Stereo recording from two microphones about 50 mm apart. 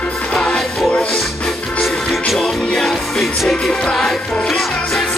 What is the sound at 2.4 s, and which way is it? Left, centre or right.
Music, centre.